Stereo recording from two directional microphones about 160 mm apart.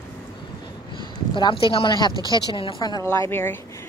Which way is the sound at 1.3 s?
30° left (ahead or behind).